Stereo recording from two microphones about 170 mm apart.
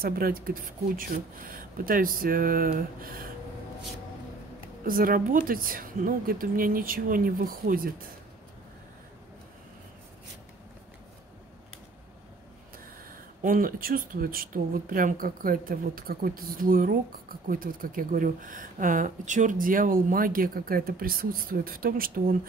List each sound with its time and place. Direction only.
0.0 s speech: 60° right (ahead or behind)
4.8 s speech: 55° right (ahead or behind)
13.4 s speech: 55° right (ahead or behind)